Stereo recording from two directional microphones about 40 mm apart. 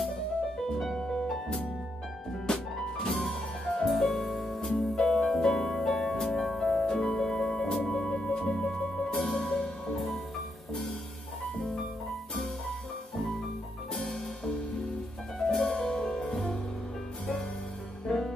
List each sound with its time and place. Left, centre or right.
0.7 s music: centre
2.4 s music: centre
3.8 s music: centre
9.9 s music: centre
13.9 s music: centre